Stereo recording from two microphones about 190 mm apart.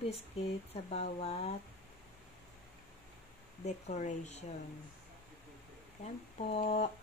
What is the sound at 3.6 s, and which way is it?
Speech, 40° left (ahead or behind).